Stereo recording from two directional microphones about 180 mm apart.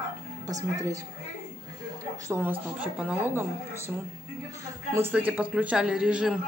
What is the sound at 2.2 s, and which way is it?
A woman's voice, 10° right (ahead or behind).